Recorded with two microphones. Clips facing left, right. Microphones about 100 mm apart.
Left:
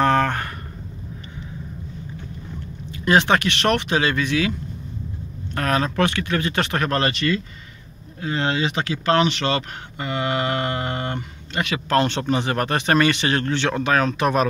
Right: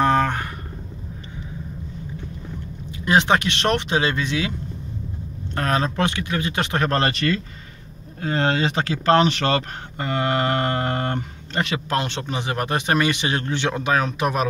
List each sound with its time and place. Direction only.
0.0 s a sound: 15° right (ahead or behind)
3.1 s speech: 20° right (ahead or behind)
6.8 s speech: 35° right (ahead or behind)
12.1 s speech: 5° right (ahead or behind)